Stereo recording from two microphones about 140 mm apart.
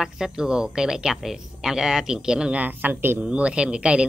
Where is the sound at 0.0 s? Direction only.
5° right (ahead or behind).